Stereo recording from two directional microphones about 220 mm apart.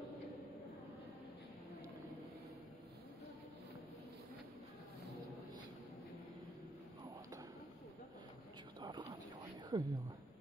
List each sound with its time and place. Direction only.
9.7 s a woman's voice: 20° right (ahead or behind)